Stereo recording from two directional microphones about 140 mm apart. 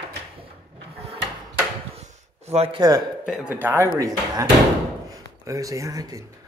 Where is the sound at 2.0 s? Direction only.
50° right (ahead or behind).